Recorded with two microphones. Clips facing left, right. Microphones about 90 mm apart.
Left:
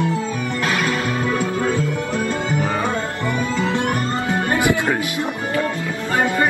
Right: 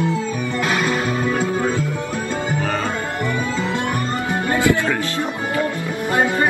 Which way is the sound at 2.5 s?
15° left (ahead or behind).